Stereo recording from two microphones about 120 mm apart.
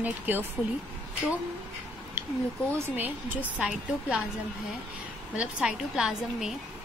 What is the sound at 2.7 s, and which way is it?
A woman's voice, 15° right (ahead or behind).